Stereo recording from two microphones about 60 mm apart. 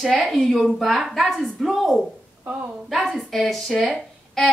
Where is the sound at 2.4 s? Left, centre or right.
Right.